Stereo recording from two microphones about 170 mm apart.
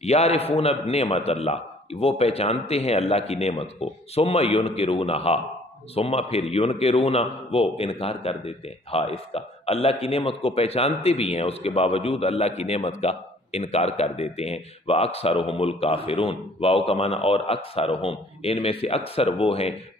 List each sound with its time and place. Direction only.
0.0 s a man's voice: 40° left (ahead or behind)